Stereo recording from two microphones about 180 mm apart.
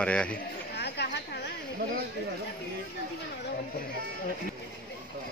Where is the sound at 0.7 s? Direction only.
65° left (ahead or behind).